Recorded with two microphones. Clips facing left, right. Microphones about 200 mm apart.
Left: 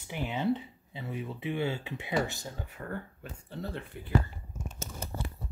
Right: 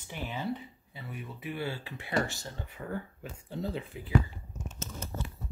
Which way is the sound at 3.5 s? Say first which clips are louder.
Right 3 dB; 15° right (ahead or behind).